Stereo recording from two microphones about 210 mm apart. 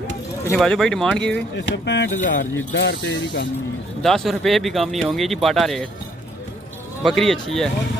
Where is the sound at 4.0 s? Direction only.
Centre (ahead or behind).